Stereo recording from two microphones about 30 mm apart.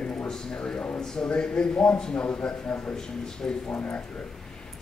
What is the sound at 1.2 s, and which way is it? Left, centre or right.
Speech, left.